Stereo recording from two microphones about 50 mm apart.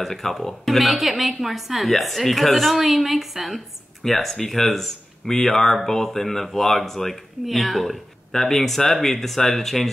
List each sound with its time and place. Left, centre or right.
0.0 s speech: centre